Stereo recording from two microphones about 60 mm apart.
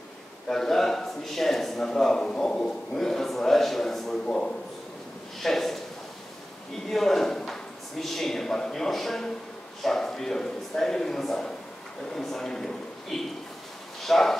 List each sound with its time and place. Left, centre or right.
0.5 s speech: centre
4.3 s speech: centre
5.4 s speech: centre
6.9 s a man's voice: centre